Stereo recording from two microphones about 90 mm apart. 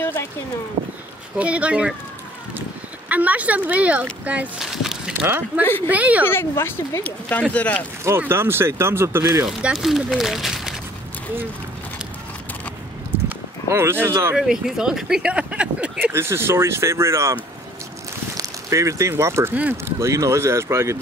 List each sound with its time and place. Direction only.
0.0 s a sound: 25° left (ahead or behind)
1.4 s speech: 15° right (ahead or behind)
3.1 s speech: 15° right (ahead or behind)
4.6 s a sound: 5° right (ahead or behind)
5.6 s speech: 20° left (ahead or behind)
5.9 s speech: 15° right (ahead or behind)
6.2 s speech: 25° left (ahead or behind)
7.0 s speech: 15° left (ahead or behind)
8.2 s speech: 25° right (ahead or behind)
9.5 s speech: 5° right (ahead or behind)
13.7 s speech: 30° right (ahead or behind)
14.3 s speech: 5° right (ahead or behind)
16.1 s speech: 30° right (ahead or behind)
18.4 s speech: 35° right (ahead or behind)